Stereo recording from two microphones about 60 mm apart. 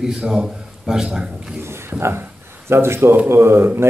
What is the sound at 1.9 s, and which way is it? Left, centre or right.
A man's voice, right.